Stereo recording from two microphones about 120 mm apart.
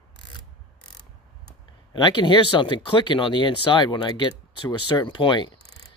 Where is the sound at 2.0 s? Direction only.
40° left (ahead or behind).